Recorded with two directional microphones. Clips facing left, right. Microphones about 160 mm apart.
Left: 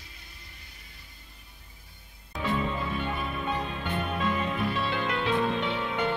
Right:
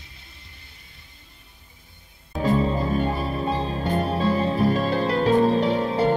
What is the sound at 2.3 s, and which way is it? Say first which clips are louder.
Music: right 8 dB; 40° right (ahead or behind).